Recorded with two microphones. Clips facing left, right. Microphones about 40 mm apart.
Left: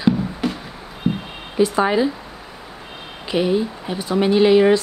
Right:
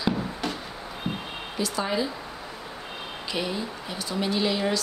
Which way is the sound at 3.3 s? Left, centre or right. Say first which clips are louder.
Left 11 dB; left.